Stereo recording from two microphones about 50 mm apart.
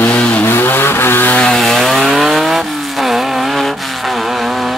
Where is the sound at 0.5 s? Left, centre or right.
Left.